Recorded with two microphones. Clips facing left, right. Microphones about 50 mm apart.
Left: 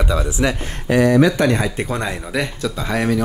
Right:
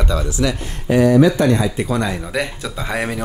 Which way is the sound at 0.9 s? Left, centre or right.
Left.